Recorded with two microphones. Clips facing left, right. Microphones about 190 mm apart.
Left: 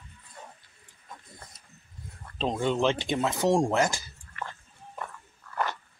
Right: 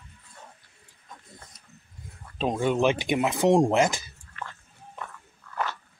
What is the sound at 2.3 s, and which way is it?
Speech, 10° right (ahead or behind).